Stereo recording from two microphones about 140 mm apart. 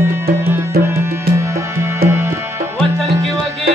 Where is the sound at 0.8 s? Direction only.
20° right (ahead or behind).